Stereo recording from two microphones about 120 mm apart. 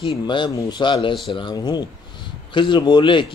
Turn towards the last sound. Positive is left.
turn(degrees=40)  # may be behind; listen again after turning